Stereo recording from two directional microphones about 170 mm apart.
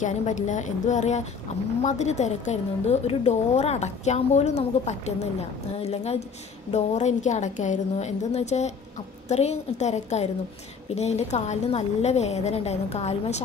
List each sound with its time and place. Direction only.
0.0 s a woman's voice: 45° left (ahead or behind)